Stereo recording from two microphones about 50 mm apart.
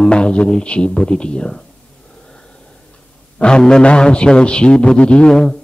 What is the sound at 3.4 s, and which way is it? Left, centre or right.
A man's voice, centre.